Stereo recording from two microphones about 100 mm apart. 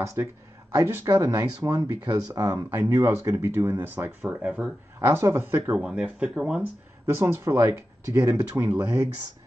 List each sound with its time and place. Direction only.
0.8 s speech: 20° right (ahead or behind)
4.3 s speech: 10° right (ahead or behind)
5.0 s speech: 25° right (ahead or behind); by 6.7 s 10° right (ahead or behind)
7.2 s speech: 30° right (ahead or behind)